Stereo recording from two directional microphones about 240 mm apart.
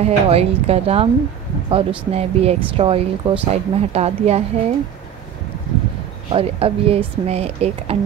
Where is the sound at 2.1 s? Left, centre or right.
Right.